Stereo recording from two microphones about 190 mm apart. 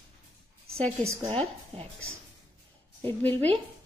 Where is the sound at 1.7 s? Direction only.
30° right (ahead or behind).